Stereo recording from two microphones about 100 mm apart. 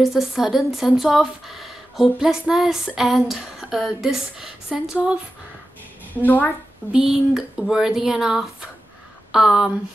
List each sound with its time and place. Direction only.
0.0 s speech: 5° right (ahead or behind)
6.2 s a woman's voice: 15° left (ahead or behind)
6.9 s speech: 5° right (ahead or behind)